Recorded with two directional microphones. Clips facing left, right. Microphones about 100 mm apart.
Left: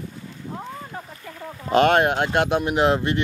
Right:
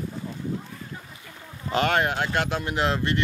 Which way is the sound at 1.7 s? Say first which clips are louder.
Left 6 dB; 20° left (ahead or behind).